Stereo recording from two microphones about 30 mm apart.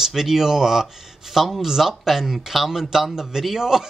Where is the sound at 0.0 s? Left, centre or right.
Centre.